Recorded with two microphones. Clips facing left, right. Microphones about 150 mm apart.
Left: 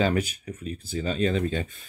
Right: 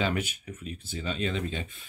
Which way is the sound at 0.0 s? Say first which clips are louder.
Left 5 dB; 40° left (ahead or behind).